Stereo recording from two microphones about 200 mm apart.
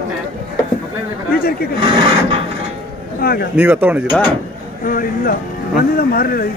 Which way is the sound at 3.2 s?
50° left (ahead or behind).